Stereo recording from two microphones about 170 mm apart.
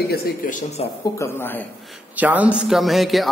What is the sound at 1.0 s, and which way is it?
Speech, 15° left (ahead or behind).